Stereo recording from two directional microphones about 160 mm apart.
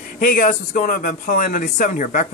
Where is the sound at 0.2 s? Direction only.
60° left (ahead or behind).